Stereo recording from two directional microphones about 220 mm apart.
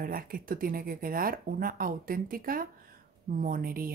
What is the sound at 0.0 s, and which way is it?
Speech, 40° right (ahead or behind).